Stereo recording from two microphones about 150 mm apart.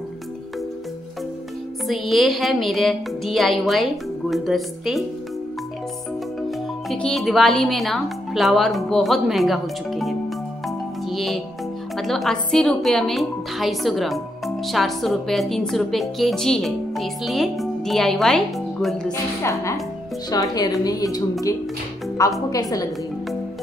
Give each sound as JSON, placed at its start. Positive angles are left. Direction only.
{"t": 1.9, "sound": "a woman's voice", "side_deg": 0}
{"t": 6.9, "sound": "a woman's voice", "side_deg": 5}
{"t": 11.1, "sound": "music", "side_deg": 0}
{"t": 12.0, "sound": "a woman's voice", "side_deg": 0}
{"t": 19.4, "sound": "speech", "side_deg": 20}